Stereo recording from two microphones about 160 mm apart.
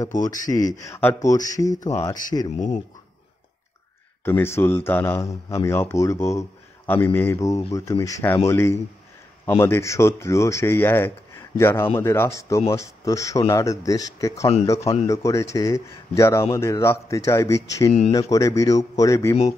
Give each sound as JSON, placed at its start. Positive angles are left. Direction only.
{"t": 0.2, "sound": "speech", "side_deg": 20}
{"t": 4.2, "sound": "speech", "side_deg": 15}
{"t": 14.8, "sound": "speech", "side_deg": 40}
{"t": 15.0, "sound": "speech", "side_deg": 20}